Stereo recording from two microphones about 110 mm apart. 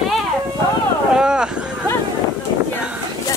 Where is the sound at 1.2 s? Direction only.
5° right (ahead or behind).